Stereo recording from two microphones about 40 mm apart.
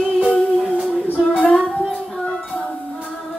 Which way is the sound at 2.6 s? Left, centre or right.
Left.